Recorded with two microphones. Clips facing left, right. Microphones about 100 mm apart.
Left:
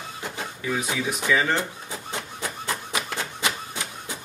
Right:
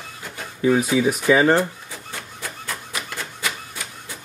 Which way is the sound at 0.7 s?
45° right (ahead or behind).